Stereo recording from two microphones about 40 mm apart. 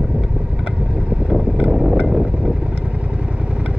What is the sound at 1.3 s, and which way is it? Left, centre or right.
Vehicle, right.